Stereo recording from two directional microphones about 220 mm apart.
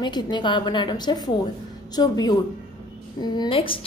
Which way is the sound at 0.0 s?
20° left (ahead or behind).